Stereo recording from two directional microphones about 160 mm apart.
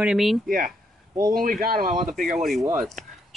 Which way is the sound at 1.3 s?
60° right (ahead or behind).